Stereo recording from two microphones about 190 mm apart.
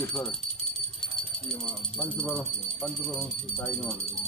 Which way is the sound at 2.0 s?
5° left (ahead or behind).